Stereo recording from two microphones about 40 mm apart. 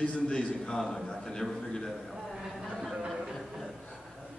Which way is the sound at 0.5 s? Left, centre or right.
Centre.